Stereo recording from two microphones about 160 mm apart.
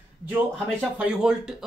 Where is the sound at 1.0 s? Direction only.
5° right (ahead or behind).